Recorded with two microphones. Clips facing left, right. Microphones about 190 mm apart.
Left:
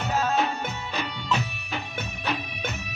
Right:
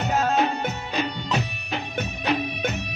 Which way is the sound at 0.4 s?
15° right (ahead or behind).